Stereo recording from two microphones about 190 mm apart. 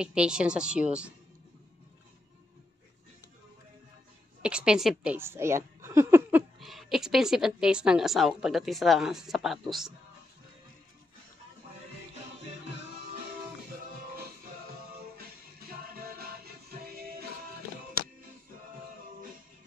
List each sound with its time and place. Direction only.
0.0 s a woman's voice: 5° right (ahead or behind)
4.4 s a woman's voice: 5° right (ahead or behind)
6.6 s a woman's voice: centre (ahead or behind)
16.8 s music: 55° right (ahead or behind)